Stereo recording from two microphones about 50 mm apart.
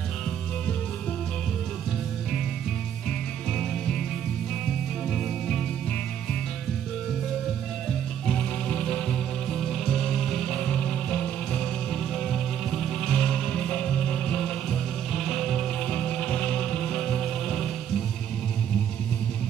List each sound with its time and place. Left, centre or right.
3.5 s music: centre
8.3 s music: left
9.5 s music: centre; by 11.6 s left
11.9 s music: centre
15.9 s music: centre